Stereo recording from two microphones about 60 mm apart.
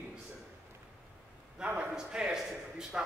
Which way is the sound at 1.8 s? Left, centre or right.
Centre.